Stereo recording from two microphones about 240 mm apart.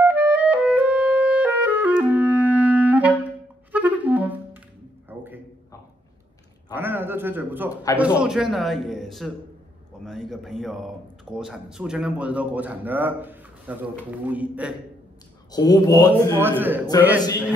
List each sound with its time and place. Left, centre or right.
0.0 s clarinet: centre
3.7 s music: centre
6.7 s a man's voice: centre
15.5 s speech: centre
16.3 s a man's voice: centre